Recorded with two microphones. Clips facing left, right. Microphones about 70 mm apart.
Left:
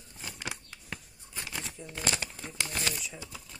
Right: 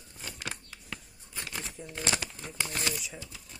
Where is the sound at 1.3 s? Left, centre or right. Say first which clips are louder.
Even; centre.